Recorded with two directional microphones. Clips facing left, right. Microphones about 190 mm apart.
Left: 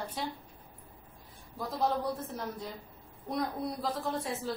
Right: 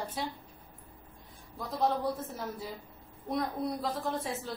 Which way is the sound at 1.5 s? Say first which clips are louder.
Right 1 dB; centre (ahead or behind).